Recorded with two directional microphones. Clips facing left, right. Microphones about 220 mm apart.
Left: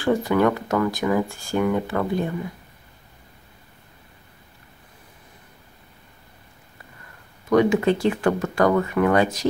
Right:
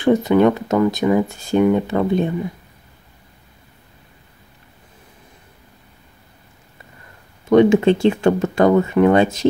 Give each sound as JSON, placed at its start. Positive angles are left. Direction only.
{"t": 0.0, "sound": "speech", "side_deg": -20}
{"t": 7.4, "sound": "speech", "side_deg": -25}